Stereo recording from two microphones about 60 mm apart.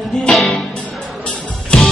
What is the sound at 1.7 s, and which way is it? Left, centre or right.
Music, centre.